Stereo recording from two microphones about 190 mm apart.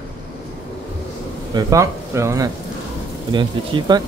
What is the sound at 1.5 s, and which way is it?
Speech, 15° right (ahead or behind).